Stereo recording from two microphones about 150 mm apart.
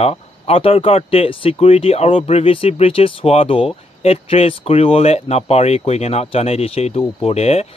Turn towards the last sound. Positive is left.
turn(degrees=45)  # may be behind; listen again after turning